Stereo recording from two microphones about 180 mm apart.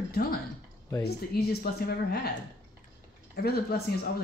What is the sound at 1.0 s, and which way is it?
Speech, 60° left (ahead or behind).